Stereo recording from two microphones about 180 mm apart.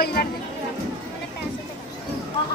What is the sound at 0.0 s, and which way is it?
Speech, 60° left (ahead or behind).